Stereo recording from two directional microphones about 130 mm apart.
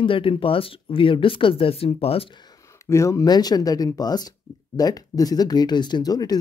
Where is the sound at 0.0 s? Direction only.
45° left (ahead or behind).